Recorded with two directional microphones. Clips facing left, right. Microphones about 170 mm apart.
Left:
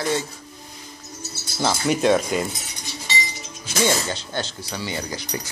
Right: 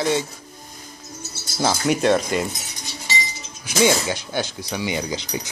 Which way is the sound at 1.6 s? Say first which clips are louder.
Right 1 dB; 10° right (ahead or behind).